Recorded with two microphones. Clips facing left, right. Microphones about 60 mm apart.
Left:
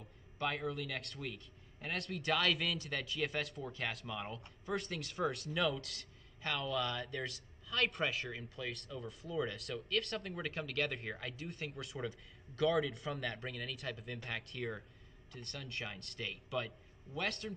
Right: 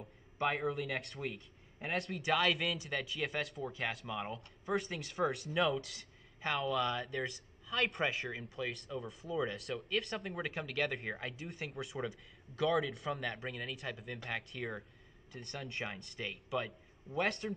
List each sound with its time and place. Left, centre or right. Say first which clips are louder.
0.5 s a man's voice: right 4 dB; centre
11.7 s a man's voice: right 2 dB; centre